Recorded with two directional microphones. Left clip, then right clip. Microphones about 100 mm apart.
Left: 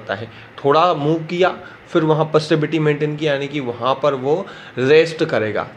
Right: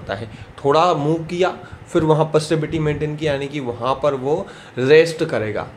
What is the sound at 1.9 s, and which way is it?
Speech, 20° right (ahead or behind).